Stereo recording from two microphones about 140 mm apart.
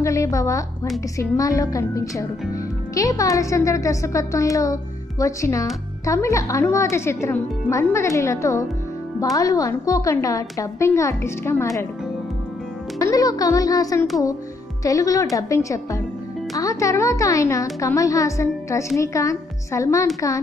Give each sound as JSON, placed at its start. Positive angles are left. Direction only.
{"t": 0.0, "sound": "a woman's voice", "side_deg": 20}
{"t": 13.1, "sound": "a woman's voice", "side_deg": 25}